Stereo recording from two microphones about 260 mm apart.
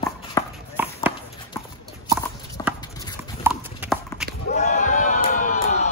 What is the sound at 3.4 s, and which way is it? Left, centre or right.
Clip-clop, centre.